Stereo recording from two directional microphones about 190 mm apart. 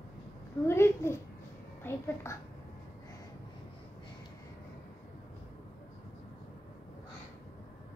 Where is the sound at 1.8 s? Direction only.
15° left (ahead or behind).